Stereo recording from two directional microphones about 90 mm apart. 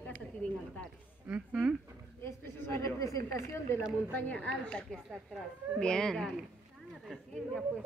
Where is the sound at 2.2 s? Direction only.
30° left (ahead or behind).